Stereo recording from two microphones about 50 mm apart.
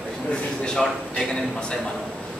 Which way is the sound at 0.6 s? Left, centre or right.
Centre.